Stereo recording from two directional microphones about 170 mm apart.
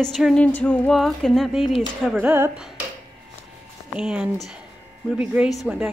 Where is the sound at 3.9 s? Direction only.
5° right (ahead or behind).